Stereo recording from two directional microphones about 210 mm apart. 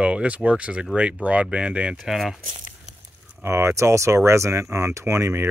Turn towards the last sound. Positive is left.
turn(degrees=-15)  # may be behind; listen again after turning